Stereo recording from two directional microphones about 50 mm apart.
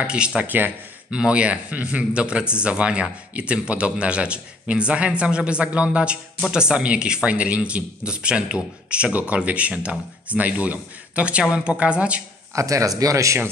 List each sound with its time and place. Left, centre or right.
0.0 s a man's voice: right
0.4 s speech: right
1.1 s a man's voice: right
12.5 s speech: right